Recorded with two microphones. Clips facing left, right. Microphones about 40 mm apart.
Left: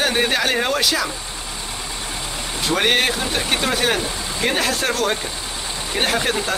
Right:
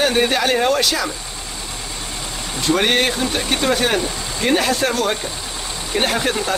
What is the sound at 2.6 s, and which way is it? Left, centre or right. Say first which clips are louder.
Speech: right 1 dB; centre.